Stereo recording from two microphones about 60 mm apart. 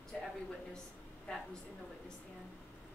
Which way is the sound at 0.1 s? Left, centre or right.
Centre.